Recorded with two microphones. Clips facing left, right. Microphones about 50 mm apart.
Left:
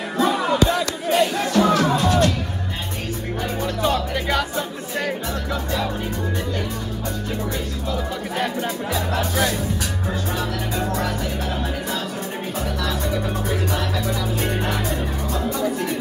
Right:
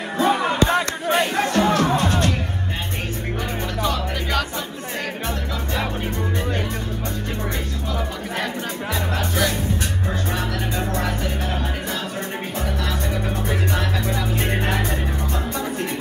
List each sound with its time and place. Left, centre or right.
0.2 s music: right
3.8 s music: left
8.9 s music: right
10.8 s music: right
13.5 s music: right